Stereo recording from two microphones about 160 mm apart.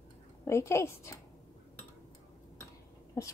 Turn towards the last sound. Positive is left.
turn(degrees=20)  # may be behind; listen again after turning